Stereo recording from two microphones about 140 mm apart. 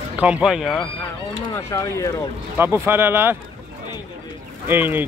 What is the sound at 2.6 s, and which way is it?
Speech, 15° right (ahead or behind).